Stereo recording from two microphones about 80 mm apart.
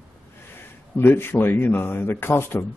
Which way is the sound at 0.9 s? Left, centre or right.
Left.